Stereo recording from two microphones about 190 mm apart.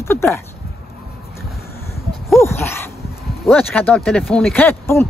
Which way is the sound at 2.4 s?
10° left (ahead or behind).